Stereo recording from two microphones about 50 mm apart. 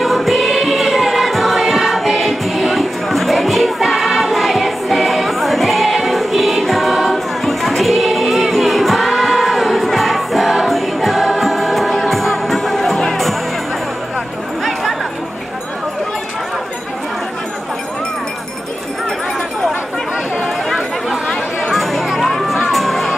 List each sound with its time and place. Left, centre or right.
0.0 s music: centre
14.6 s chatter: centre
20.4 s a sound: centre
22.7 s crowd: centre